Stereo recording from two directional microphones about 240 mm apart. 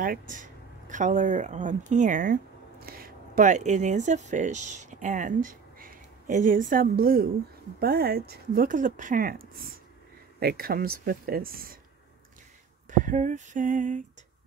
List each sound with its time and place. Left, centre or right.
0.0 s speech: right
12.9 s speech: right